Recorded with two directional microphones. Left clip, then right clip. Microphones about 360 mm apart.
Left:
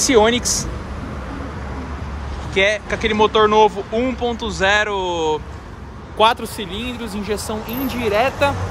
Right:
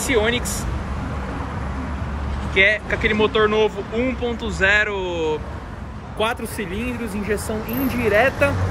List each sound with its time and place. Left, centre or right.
0.0 s speech: centre
2.5 s speech: centre
6.6 s speech: centre